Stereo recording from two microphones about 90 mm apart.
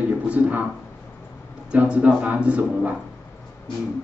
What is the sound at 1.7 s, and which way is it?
Speech, 15° right (ahead or behind).